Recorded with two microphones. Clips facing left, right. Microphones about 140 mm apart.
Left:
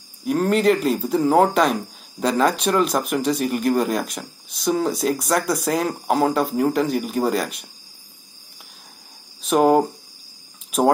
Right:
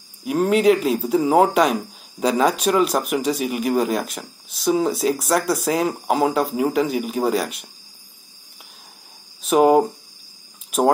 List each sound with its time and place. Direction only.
0.2 s speech: 5° right (ahead or behind)
9.4 s speech: centre (ahead or behind)